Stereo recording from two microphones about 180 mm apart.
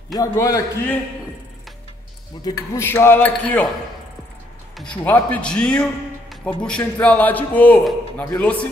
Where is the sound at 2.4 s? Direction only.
15° left (ahead or behind).